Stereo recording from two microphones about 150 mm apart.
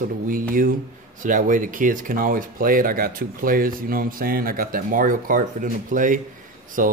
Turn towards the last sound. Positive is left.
turn(degrees=-65)  # may be behind; listen again after turning